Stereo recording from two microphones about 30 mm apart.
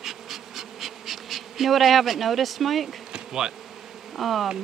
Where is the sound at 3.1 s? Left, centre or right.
Right.